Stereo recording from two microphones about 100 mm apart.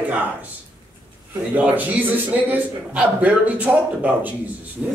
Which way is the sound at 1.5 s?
15° right (ahead or behind).